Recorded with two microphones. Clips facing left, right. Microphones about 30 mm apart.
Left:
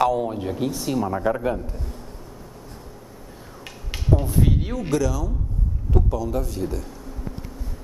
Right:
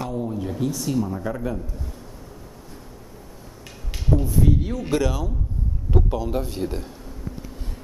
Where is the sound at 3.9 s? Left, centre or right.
Left.